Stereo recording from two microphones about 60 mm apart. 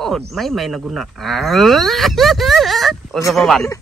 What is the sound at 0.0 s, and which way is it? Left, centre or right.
A man's voice, centre.